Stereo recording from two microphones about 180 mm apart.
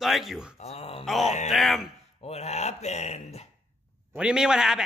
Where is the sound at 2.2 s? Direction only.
35° left (ahead or behind).